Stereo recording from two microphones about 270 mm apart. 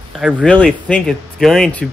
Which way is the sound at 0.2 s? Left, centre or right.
Centre.